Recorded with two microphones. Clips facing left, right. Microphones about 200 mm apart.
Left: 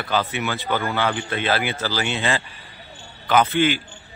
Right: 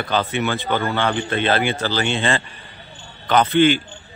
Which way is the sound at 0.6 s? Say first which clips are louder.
Right 2 dB; 25° right (ahead or behind).